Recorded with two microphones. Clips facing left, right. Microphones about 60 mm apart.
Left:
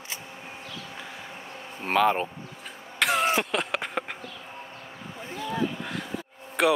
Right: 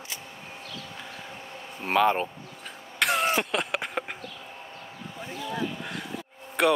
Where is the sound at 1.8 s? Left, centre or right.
Centre.